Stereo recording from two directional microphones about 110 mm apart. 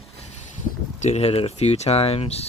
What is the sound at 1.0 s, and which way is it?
Speech, 80° left.